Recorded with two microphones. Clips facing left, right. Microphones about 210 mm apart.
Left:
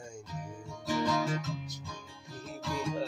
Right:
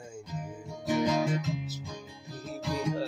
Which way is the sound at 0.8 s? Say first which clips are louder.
Right 3 dB; 20° right (ahead or behind).